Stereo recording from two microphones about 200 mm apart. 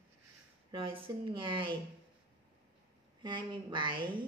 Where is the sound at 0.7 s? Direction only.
25° right (ahead or behind).